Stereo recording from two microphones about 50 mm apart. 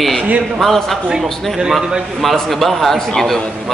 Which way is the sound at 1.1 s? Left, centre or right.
Centre.